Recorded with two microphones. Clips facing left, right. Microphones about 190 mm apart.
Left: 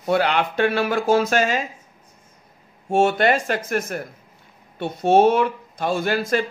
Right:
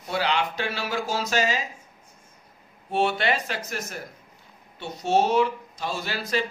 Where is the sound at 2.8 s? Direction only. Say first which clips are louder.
Left 6 dB; 45° left (ahead or behind).